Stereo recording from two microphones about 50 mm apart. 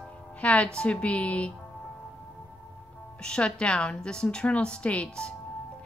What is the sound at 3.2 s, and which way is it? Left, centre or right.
A woman's voice, centre.